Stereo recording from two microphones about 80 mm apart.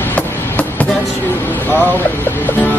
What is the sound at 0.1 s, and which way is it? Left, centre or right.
Music, centre.